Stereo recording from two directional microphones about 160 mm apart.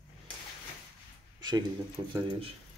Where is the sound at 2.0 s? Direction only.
20° right (ahead or behind).